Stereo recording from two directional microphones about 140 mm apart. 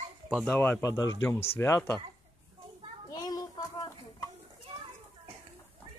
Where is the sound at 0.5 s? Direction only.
10° left (ahead or behind).